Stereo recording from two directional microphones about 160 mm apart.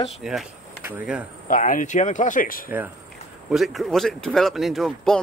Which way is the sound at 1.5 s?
55° left (ahead or behind).